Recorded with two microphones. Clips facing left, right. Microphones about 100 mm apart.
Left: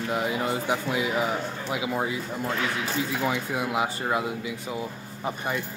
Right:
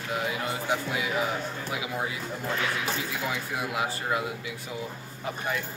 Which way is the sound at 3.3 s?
25° left (ahead or behind).